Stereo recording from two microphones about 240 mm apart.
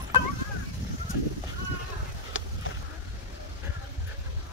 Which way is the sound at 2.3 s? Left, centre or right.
Left.